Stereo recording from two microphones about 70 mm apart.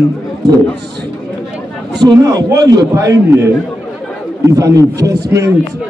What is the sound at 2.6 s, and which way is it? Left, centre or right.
Speech, right.